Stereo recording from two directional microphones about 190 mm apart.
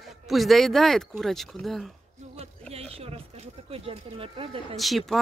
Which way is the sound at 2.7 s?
30° right (ahead or behind).